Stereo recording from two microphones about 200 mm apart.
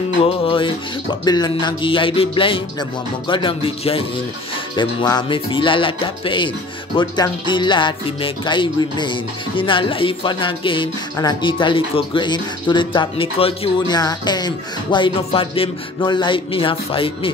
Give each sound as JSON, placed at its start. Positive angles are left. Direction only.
{"t": 0.2, "sound": "speech", "side_deg": 25}